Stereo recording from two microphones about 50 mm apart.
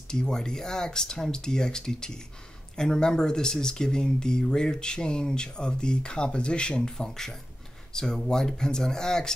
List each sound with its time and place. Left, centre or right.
0.1 s speech: centre
6.9 s speech: centre